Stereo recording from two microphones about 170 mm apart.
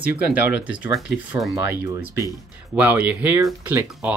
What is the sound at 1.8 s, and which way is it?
Speech, 15° right (ahead or behind).